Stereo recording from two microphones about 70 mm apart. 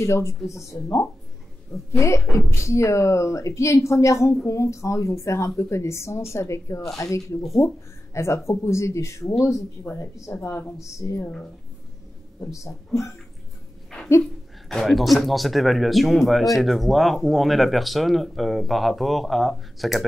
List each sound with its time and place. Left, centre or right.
0.0 s a woman's voice: left
12.5 s a woman's voice: left
14.7 s speech: centre